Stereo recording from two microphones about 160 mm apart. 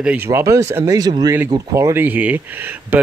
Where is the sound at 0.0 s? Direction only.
10° right (ahead or behind).